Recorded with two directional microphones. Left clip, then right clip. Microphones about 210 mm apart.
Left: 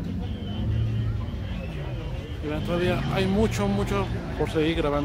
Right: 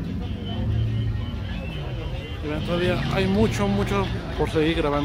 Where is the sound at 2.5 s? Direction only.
5° left (ahead or behind).